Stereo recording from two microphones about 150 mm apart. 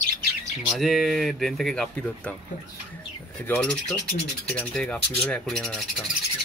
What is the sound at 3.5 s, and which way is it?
Speech, 5° left (ahead or behind).